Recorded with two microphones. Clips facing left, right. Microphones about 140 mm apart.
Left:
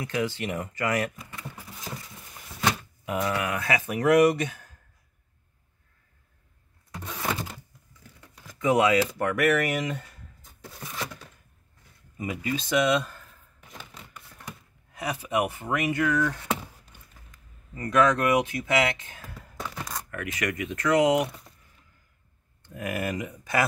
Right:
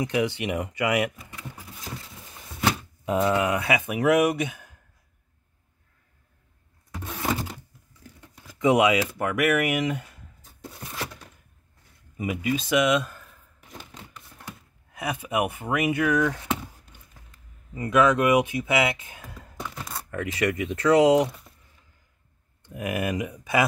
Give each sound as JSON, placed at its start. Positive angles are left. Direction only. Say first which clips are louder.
{"t": 0.0, "sound": "speech", "louder": "right 4 dB", "side_deg": -15}
{"t": 3.1, "sound": "speech", "louder": "right 5 dB", "side_deg": -25}
{"t": 8.5, "sound": "speech", "louder": "right 2 dB", "side_deg": -15}
{"t": 12.2, "sound": "speech", "louder": "right 4 dB", "side_deg": -10}
{"t": 15.2, "sound": "speech", "louder": "even", "side_deg": -15}
{"t": 17.7, "sound": "speech", "louder": "right 2 dB", "side_deg": -10}
{"t": 20.1, "sound": "speech", "louder": "right 6 dB", "side_deg": -25}
{"t": 22.8, "sound": "speech", "louder": "right 3 dB", "side_deg": -15}